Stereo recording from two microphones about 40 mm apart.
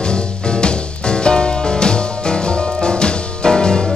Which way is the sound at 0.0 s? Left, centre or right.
Left.